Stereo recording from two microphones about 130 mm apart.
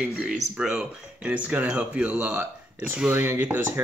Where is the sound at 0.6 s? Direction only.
5° right (ahead or behind).